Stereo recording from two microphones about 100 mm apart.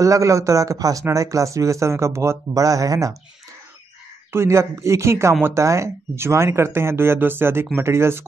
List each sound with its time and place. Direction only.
0.0 s speech: 30° right (ahead or behind)
4.3 s speech: 25° right (ahead or behind)